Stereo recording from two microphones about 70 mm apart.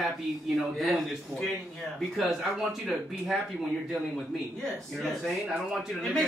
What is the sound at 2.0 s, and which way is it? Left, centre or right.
Speech, centre.